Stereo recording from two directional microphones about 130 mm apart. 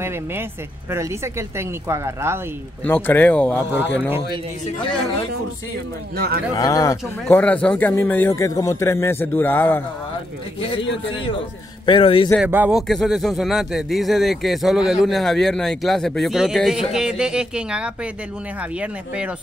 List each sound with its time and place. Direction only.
0.0 s speech: 15° right (ahead or behind)
2.8 s a man's voice: 15° left (ahead or behind)
6.5 s speech: 25° left (ahead or behind)
7.2 s a man's voice: 10° left (ahead or behind)
11.8 s a man's voice: 40° left (ahead or behind)
12.4 s speech: 15° right (ahead or behind)
12.7 s speech: centre (ahead or behind)